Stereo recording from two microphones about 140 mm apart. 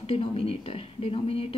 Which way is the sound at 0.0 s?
45° left (ahead or behind).